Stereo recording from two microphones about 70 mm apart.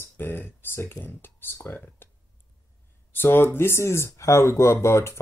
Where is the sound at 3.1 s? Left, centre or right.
Left.